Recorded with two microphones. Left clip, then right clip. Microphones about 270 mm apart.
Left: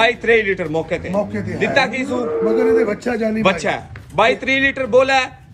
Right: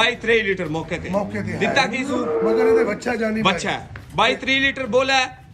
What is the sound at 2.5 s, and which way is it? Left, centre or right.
Speech, right.